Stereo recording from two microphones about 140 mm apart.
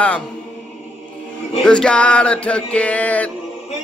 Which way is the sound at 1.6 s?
5° left (ahead or behind).